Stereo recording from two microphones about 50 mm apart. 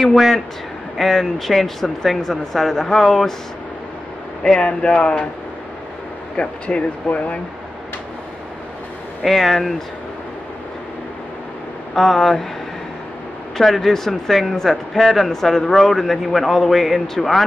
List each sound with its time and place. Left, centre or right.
0.0 s speech: centre
4.4 s speech: centre
6.3 s speech: left
9.2 s speech: centre
11.9 s speech: centre
13.6 s speech: centre